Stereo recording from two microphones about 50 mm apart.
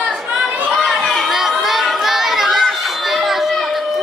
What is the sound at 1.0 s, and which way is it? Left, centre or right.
Chatter, centre.